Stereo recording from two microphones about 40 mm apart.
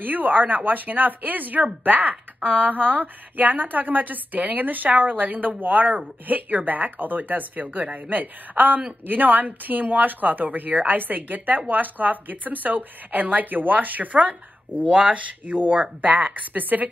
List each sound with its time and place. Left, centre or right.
0.0 s a woman's voice: right
14.9 s a woman's voice: right